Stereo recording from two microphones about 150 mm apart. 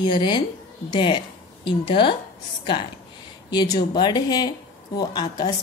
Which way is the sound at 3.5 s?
30° left (ahead or behind).